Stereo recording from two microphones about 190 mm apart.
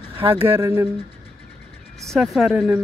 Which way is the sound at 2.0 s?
Centre (ahead or behind).